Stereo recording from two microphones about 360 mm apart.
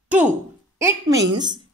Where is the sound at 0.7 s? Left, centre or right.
Centre.